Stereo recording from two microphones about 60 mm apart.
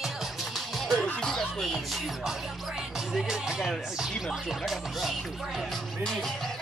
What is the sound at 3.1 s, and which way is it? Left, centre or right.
Speech, centre.